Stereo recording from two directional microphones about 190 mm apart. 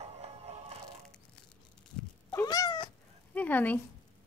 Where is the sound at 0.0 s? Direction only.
35° right (ahead or behind).